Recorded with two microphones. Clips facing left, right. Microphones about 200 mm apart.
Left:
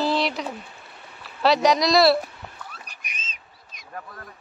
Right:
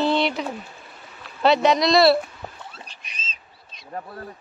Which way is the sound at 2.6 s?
25° right (ahead or behind).